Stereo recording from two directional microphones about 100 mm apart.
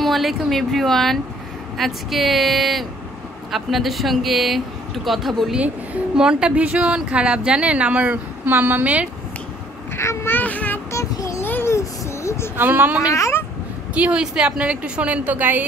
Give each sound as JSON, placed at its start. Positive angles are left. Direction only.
{"t": 0.0, "sound": "speech", "side_deg": 0}
{"t": 9.9, "sound": "a sound", "side_deg": 25}
{"t": 10.9, "sound": "a sound", "side_deg": 30}
{"t": 12.5, "sound": "speech", "side_deg": -20}
{"t": 13.1, "sound": "a child's voice", "side_deg": 30}
{"t": 13.9, "sound": "speech", "side_deg": -10}